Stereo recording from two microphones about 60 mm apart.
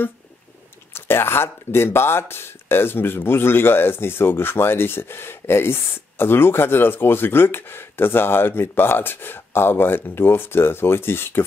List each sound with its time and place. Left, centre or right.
0.9 s speech: left